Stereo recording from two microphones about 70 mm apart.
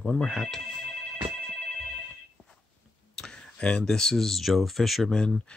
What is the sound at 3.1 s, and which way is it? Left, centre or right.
Speech, centre.